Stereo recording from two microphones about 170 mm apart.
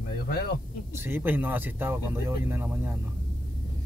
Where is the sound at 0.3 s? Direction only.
70° left (ahead or behind).